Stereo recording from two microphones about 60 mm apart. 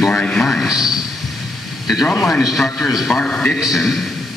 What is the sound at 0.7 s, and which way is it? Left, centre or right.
Speech, centre.